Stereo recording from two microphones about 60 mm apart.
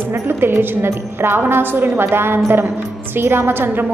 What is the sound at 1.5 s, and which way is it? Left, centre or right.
A woman's voice, right.